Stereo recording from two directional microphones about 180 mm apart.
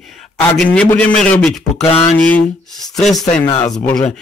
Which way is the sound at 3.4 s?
30° left (ahead or behind).